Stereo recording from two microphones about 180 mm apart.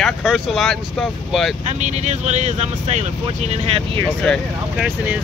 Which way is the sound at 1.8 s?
40° right (ahead or behind).